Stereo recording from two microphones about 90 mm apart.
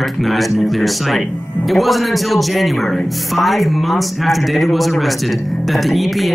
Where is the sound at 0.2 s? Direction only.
Centre (ahead or behind).